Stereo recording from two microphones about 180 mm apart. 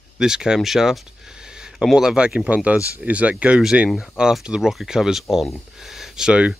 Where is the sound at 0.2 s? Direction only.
5° right (ahead or behind).